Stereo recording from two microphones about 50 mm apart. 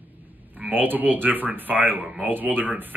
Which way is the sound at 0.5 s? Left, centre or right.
Right.